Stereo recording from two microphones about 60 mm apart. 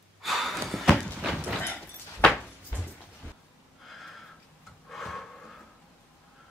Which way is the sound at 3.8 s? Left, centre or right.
Centre.